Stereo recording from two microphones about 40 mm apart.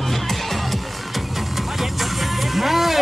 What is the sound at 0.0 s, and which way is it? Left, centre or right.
Music, centre.